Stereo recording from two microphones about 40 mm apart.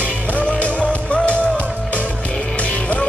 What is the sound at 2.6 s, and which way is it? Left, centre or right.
Music, left.